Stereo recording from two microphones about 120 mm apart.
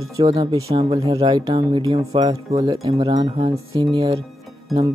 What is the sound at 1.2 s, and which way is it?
Speech, 45° right (ahead or behind).